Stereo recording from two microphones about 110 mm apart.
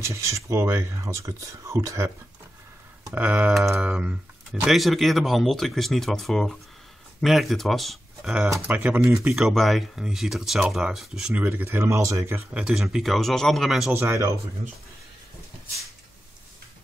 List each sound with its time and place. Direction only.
0.0 s speech: 25° right (ahead or behind)
3.2 s speech: 15° right (ahead or behind)
3.5 s speech: centre (ahead or behind)
8.6 s speech: 15° right (ahead or behind)
9.3 s speech: centre (ahead or behind); by 12.4 s 30° right (ahead or behind)
12.5 s speech: 5° right (ahead or behind)
13.9 s speech: 25° right (ahead or behind)